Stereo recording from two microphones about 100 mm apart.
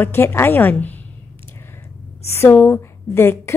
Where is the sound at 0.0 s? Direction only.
20° left (ahead or behind).